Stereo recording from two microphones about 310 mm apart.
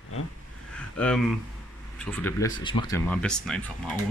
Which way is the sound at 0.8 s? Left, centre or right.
Centre.